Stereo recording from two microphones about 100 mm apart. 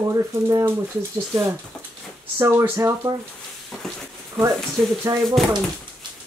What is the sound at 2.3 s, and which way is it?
Speech, 25° right (ahead or behind).